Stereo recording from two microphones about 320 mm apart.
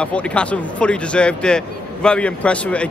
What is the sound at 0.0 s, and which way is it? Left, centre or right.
Speech, centre.